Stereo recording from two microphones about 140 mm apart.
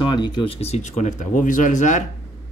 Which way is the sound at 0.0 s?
30° left (ahead or behind).